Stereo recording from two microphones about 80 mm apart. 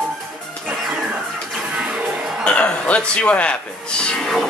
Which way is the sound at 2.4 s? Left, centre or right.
Centre.